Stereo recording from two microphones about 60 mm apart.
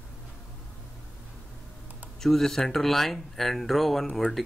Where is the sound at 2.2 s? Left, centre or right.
Centre.